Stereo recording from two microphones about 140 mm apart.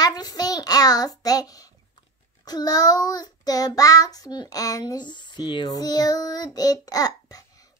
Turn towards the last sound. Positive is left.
turn(degrees=25)  # may be behind; listen again after turning